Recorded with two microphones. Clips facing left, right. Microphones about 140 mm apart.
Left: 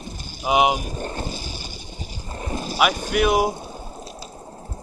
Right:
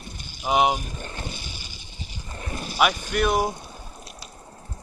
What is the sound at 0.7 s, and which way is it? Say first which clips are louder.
Boat: left 6 dB; 40° left (ahead or behind).